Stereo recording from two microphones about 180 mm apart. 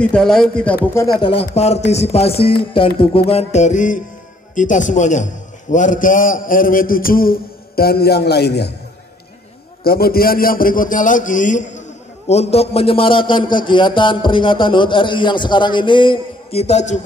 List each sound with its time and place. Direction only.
0.0 s speech: 5° left (ahead or behind)
1.2 s a man's voice: 35° left (ahead or behind); by 8.7 s 65° left (ahead or behind)
9.8 s a man's voice: 55° left (ahead or behind); by 17.0 s 40° left (ahead or behind)